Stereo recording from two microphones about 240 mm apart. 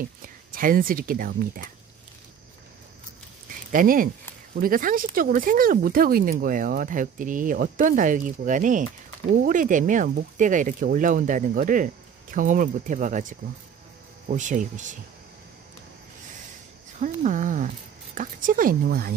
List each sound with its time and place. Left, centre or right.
0.0 s speech: right
3.7 s speech: right
17.0 s speech: right